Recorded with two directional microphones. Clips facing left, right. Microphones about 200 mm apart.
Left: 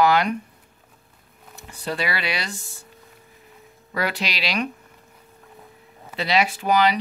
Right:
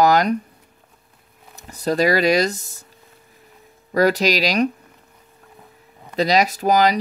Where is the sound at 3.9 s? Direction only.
40° right (ahead or behind).